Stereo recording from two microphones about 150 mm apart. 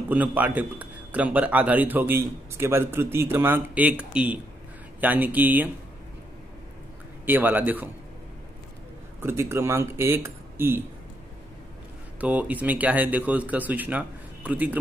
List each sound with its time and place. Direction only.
0.1 s a man's voice: 10° right (ahead or behind)
7.2 s a man's voice: 10° right (ahead or behind)
9.2 s a man's voice: 15° right (ahead or behind)
12.2 s a man's voice: 10° right (ahead or behind)